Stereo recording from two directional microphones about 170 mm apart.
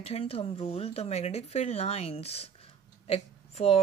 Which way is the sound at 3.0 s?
35° left (ahead or behind).